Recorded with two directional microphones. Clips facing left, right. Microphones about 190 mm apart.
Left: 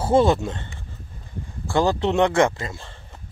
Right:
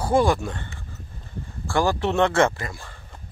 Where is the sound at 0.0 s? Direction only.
25° left (ahead or behind).